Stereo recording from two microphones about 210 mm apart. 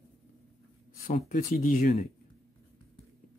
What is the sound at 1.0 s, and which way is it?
Speech, 40° left (ahead or behind).